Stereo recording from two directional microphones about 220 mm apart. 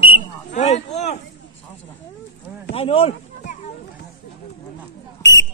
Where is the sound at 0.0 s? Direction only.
25° left (ahead or behind).